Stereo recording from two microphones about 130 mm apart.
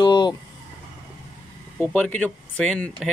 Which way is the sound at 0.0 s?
35° left (ahead or behind).